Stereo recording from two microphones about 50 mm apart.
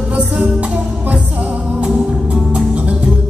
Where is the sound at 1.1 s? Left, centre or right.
Right.